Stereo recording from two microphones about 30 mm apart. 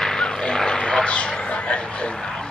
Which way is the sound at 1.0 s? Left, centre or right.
Left.